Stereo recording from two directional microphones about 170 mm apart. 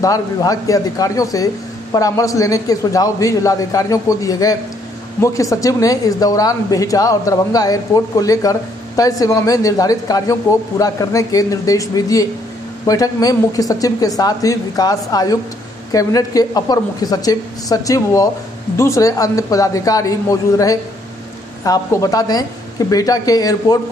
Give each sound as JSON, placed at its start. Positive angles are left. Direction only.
{"t": 0.0, "sound": "speech", "side_deg": 20}